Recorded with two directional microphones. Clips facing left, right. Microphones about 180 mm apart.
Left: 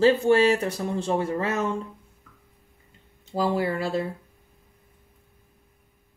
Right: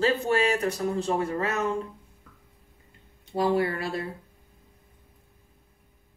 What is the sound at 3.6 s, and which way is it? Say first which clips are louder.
Speech: left 2 dB; 25° left (ahead or behind).